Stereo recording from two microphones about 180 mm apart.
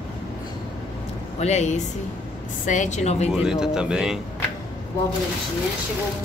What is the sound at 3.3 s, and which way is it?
Speech, 5° right (ahead or behind).